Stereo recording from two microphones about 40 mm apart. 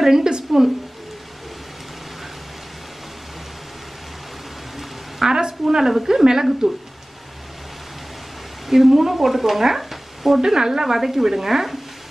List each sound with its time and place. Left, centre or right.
0.0 s a woman's voice: centre
5.3 s a woman's voice: centre
8.6 s speech: centre